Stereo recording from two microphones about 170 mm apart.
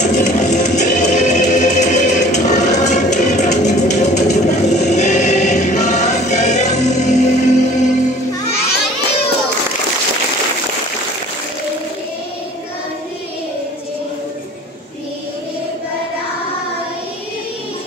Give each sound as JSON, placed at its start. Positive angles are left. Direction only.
{"t": 0.0, "sound": "music", "side_deg": 45}